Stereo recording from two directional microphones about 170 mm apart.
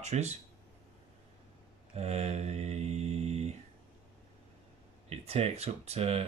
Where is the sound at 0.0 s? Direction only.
40° right (ahead or behind).